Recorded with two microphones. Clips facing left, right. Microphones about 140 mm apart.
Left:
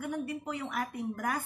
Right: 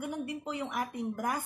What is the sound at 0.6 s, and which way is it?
Speech, 15° right (ahead or behind).